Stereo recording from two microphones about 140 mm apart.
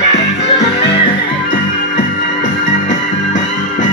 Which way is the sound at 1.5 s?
70° left (ahead or behind).